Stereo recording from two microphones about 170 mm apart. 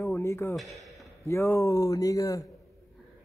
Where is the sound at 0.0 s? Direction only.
15° left (ahead or behind).